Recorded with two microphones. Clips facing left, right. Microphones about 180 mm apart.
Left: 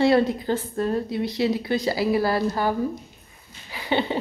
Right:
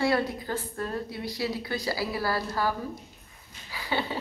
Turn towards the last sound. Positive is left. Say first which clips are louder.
# left 6 dB
turn(degrees=20)  # may be behind; listen again after turning